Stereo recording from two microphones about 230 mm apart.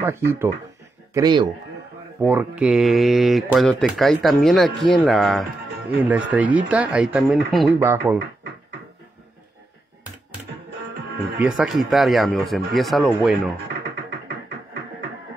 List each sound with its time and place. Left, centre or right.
0.0 s speech: centre
2.2 s speech: centre
11.3 s speech: centre